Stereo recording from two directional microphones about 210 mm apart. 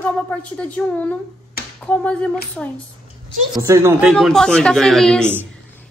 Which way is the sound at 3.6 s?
15° right (ahead or behind).